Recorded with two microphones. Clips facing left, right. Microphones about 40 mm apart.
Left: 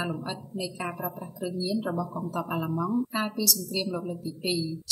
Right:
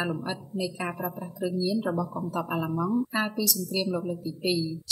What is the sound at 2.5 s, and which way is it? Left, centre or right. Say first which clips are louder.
Speech: even; right.